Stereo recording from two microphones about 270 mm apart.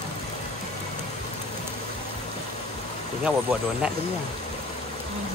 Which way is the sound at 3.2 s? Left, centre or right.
Centre.